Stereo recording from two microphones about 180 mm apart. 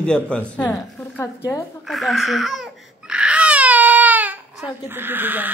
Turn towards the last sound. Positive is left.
turn(degrees=-10)  # may be behind; listen again after turning